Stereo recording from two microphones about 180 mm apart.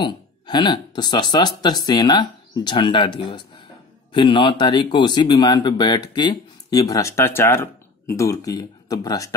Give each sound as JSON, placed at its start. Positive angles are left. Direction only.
{"t": 0.0, "sound": "speech", "side_deg": 25}